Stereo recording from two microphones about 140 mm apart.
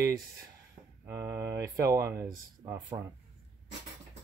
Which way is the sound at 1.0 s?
20° right (ahead or behind).